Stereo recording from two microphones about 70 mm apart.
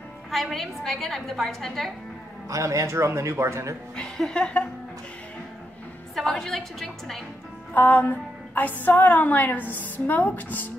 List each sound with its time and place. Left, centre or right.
0.3 s a woman's voice: centre
2.5 s speech: right
3.9 s a woman's voice: centre
6.1 s a woman's voice: centre
7.7 s a woman's voice: left